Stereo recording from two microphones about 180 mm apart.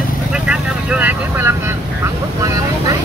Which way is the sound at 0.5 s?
10° right (ahead or behind).